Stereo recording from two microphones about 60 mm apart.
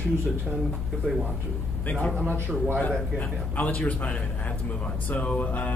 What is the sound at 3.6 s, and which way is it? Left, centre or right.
A man's voice, left.